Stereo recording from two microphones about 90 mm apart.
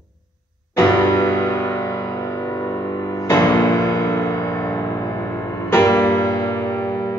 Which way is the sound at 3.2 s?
30° left (ahead or behind).